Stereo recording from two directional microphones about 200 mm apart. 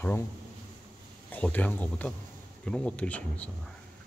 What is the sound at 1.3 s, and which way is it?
Speech, 10° left (ahead or behind).